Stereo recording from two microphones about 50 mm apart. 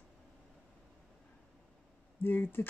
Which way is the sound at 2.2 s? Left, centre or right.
Left.